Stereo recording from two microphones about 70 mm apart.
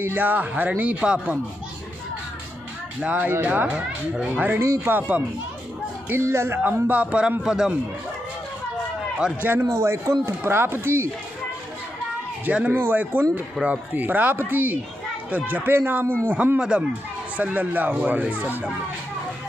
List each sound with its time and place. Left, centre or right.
0.0 s a man's voice: right
3.0 s a man's voice: centre
3.7 s a man's voice: centre
4.6 s a man's voice: right
6.2 s a man's voice: right; by 7.7 s centre
9.4 s speech: right
9.7 s speech: right
12.4 s a man's voice: centre